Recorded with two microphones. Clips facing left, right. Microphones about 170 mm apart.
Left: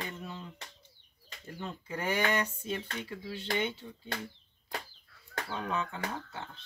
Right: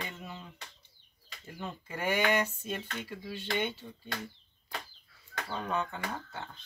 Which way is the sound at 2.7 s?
5° right (ahead or behind).